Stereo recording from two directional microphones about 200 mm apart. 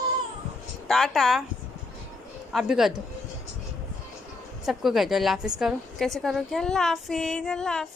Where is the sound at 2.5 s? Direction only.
Centre (ahead or behind).